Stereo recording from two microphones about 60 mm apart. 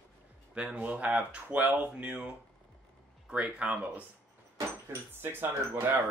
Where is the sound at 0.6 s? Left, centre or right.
Centre.